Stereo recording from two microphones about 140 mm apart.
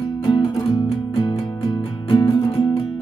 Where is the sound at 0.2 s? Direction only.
40° left (ahead or behind).